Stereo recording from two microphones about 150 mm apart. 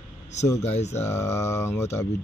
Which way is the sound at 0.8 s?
50° left (ahead or behind).